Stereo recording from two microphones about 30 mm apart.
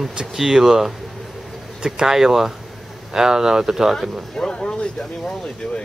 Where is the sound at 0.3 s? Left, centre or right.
Centre.